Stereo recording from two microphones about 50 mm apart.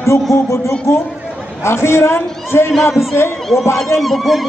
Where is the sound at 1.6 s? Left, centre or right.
Left.